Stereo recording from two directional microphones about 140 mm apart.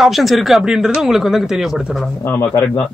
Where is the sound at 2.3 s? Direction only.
20° left (ahead or behind).